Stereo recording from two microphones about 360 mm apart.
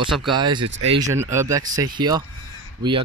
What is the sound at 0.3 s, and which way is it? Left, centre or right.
Speech, centre.